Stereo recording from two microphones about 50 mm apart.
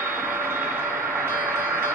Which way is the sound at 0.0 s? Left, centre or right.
Right.